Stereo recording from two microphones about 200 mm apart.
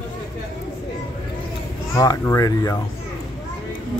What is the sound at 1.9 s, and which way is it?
Speech, 15° left (ahead or behind).